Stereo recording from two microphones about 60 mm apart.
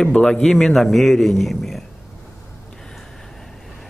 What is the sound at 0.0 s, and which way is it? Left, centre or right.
A man's voice, centre.